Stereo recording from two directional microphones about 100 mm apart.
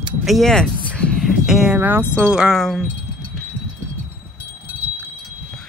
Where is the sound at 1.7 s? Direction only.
20° right (ahead or behind); by 2.9 s centre (ahead or behind).